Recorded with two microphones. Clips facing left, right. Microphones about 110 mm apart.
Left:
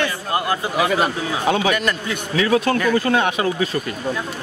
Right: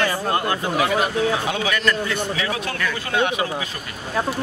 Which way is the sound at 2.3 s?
45° left (ahead or behind).